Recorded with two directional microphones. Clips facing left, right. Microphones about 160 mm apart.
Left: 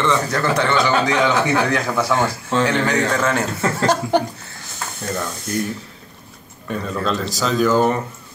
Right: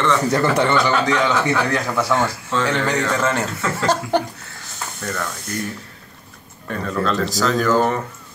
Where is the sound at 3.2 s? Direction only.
5° right (ahead or behind).